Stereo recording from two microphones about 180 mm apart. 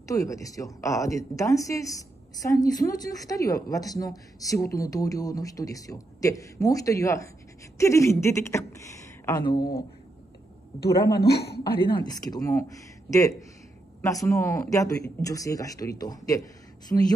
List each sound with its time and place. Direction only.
0.1 s a woman's voice: 20° left (ahead or behind)
11.1 s a woman's voice: 60° left (ahead or behind)
12.0 s a woman's voice: 20° left (ahead or behind)